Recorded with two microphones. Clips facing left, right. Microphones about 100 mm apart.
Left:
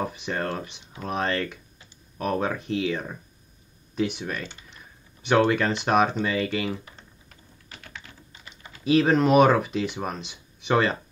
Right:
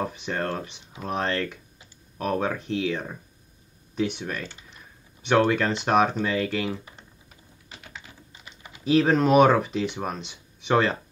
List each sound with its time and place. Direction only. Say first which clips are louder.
0.0 s speech: even; 5° left (ahead or behind)
5.5 s speech: even; centre (ahead or behind)
7.0 s typing: even; 10° right (ahead or behind)
8.8 s speech: even; 5° left (ahead or behind)